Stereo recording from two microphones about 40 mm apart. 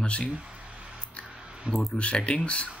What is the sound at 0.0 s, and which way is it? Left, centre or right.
Speech, left.